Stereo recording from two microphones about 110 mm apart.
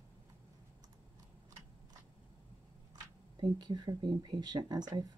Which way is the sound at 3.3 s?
40° right (ahead or behind).